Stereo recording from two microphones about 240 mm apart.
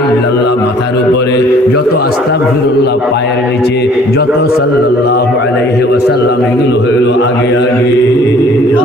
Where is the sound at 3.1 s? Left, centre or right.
Left.